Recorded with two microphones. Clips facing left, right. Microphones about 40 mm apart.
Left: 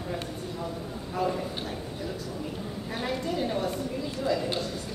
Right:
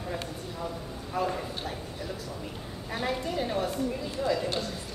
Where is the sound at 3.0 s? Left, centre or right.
Centre.